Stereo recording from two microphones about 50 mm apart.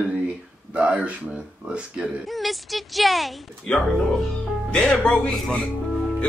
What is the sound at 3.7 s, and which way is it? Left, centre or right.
Speech, centre.